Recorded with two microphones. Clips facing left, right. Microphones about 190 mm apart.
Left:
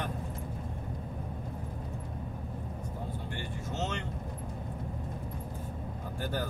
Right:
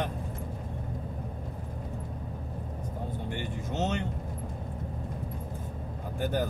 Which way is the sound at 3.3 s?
20° right (ahead or behind).